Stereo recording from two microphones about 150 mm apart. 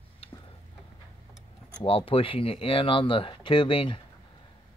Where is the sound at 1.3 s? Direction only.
40° left (ahead or behind).